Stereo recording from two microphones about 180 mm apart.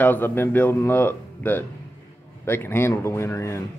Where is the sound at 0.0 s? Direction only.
10° left (ahead or behind).